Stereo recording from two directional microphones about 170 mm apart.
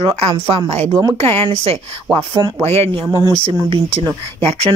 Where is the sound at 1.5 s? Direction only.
35° right (ahead or behind).